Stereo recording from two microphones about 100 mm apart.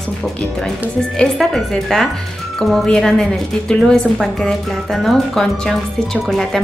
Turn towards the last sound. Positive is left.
turn(degrees=5)  # may be behind; listen again after turning